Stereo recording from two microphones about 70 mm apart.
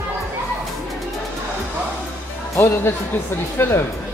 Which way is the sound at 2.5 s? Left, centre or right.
Left.